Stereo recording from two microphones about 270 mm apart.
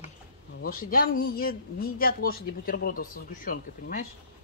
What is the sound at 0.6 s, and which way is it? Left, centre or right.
Speech, left.